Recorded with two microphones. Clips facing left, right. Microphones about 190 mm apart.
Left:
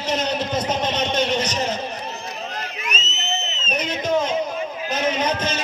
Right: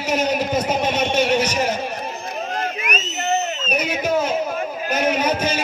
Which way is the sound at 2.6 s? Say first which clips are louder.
Right 6 dB; 55° right (ahead or behind).